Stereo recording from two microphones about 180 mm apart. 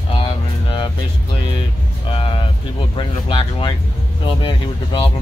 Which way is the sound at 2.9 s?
25° left (ahead or behind).